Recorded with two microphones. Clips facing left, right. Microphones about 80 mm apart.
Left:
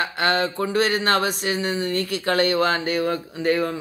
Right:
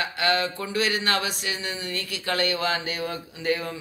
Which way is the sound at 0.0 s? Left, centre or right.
Left.